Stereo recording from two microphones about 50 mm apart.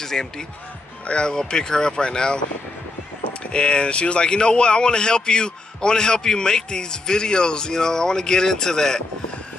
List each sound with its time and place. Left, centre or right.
0.0 s speech: centre
3.5 s speech: centre